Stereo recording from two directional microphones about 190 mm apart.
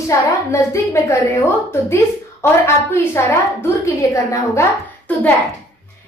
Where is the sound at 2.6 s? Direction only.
15° left (ahead or behind).